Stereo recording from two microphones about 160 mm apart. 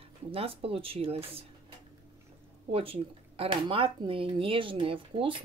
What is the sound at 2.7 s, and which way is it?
Speech, 35° right (ahead or behind).